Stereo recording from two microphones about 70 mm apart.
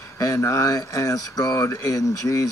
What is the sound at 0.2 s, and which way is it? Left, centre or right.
Speech, left.